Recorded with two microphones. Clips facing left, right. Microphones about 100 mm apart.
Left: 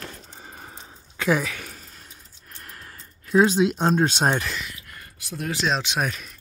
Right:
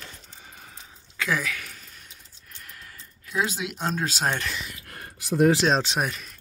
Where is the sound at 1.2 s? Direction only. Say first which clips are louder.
Left 5 dB; 30° left (ahead or behind).